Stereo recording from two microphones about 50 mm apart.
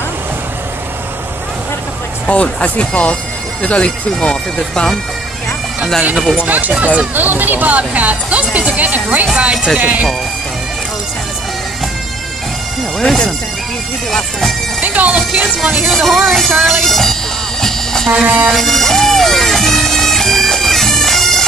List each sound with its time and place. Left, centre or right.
2.2 s speech: left
6.4 s speech: right
9.8 s speech: right
13.0 s speech: centre
14.8 s speech: right
15.6 s speech: centre
16.3 s bagpipes: centre
18.1 s speech: centre
18.5 s bagpipes: centre